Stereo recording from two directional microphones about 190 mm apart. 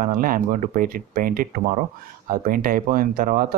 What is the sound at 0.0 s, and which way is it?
Speech, 45° right (ahead or behind).